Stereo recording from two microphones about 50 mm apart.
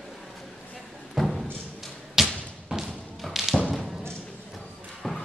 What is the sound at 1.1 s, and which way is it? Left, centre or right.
Thump, centre.